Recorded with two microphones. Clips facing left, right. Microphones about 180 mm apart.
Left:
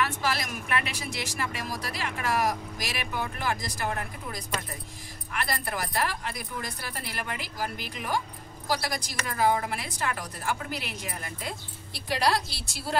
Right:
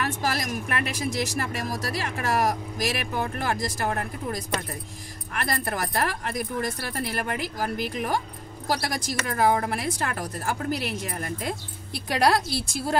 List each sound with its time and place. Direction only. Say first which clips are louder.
0.0 s speech: right 1 dB; 45° right (ahead or behind)